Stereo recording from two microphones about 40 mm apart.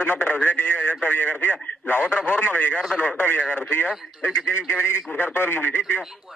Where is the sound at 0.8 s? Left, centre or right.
Left.